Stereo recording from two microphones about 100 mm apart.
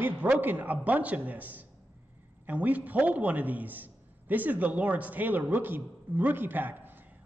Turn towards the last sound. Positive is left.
turn(degrees=-20)  # may be behind; listen again after turning